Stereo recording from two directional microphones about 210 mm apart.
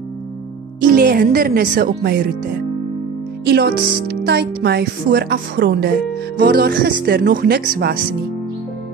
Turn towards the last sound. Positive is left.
turn(degrees=-45)  # may be behind; listen again after turning